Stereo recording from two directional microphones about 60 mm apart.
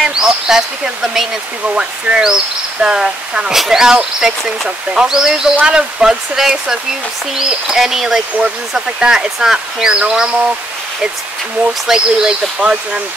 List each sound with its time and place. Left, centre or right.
0.0 s a sound: centre
1.8 s speech: centre
11.9 s speech: centre